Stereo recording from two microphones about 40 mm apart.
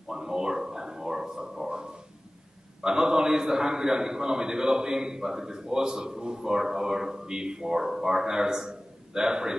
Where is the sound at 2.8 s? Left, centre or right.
Centre.